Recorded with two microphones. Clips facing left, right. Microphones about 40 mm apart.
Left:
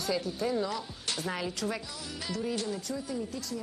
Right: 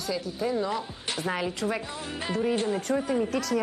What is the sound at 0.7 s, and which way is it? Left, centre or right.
Speech, right.